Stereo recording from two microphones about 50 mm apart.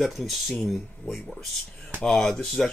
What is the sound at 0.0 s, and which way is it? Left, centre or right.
Speech, centre.